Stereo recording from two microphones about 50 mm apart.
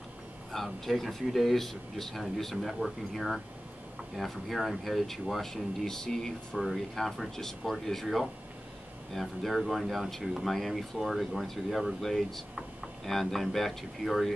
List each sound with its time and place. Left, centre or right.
0.5 s speech: centre
10.2 s speech: centre
10.5 s speech: centre